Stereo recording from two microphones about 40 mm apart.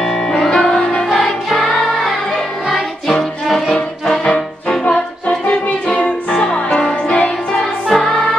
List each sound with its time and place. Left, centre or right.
0.6 s music: centre
3.7 s brass instrument: centre
5.5 s music: left
7.9 s music: centre